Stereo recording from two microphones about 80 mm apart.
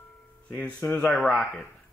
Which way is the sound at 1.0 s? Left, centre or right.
Centre.